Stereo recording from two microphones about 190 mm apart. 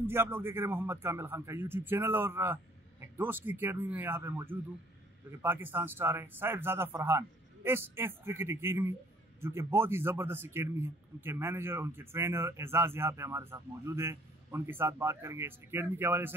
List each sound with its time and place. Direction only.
0.0 s a man's voice: 10° right (ahead or behind)